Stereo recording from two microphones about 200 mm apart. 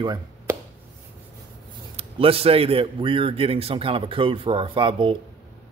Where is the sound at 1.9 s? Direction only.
30° right (ahead or behind).